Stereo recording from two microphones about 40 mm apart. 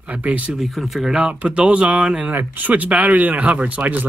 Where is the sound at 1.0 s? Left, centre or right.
Right.